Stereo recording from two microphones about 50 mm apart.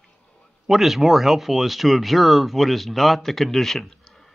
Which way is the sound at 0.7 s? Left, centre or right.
Centre.